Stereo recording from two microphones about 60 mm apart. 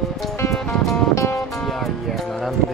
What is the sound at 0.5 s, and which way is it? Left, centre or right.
Speech, centre.